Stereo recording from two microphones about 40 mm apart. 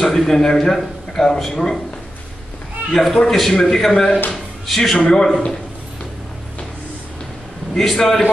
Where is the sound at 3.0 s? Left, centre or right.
Centre.